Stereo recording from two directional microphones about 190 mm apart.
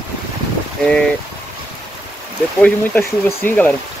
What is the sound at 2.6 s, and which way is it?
Speech, 10° left (ahead or behind).